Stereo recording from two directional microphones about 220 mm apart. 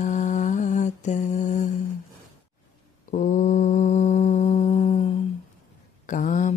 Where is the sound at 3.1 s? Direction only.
35° left (ahead or behind).